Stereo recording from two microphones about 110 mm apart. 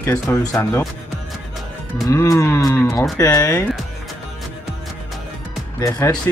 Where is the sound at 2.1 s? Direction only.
25° left (ahead or behind).